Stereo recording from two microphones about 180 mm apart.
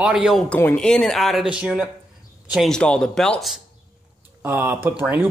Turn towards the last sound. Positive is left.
turn(degrees=-10)  # may be behind; listen again after turning